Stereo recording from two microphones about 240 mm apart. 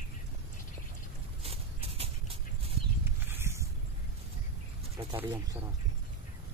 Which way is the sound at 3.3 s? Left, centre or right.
Centre.